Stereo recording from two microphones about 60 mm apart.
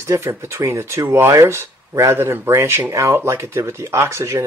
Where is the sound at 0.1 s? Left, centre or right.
Right.